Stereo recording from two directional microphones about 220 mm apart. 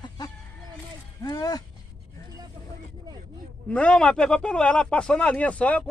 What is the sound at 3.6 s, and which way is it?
A man's voice, 5° left (ahead or behind).